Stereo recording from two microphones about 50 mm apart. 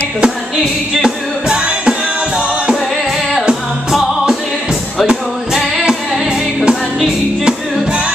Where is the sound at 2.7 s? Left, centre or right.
Centre.